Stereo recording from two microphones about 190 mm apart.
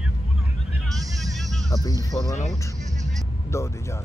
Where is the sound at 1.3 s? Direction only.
Centre (ahead or behind).